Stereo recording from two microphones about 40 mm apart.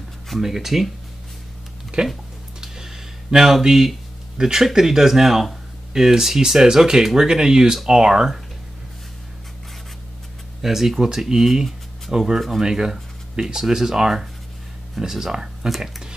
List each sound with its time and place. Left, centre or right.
0.4 s speech: centre
1.9 s speech: right
2.6 s a sound: centre
4.4 s speech: centre
10.6 s speech: centre